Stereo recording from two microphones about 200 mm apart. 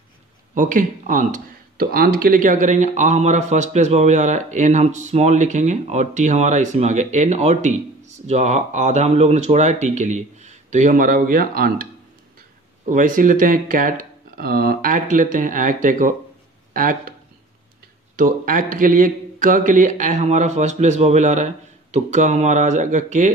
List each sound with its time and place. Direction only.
0.6 s speech: 40° right (ahead or behind)
18.1 s speech: 45° right (ahead or behind)